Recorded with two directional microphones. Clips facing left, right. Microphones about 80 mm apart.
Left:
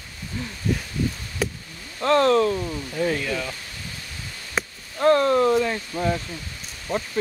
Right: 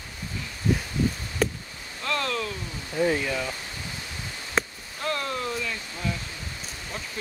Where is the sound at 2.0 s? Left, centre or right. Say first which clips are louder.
Left 11 dB; left.